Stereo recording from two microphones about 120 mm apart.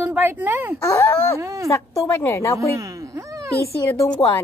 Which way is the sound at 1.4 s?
25° right (ahead or behind).